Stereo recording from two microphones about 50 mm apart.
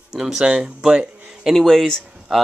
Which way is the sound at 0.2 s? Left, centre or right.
Centre.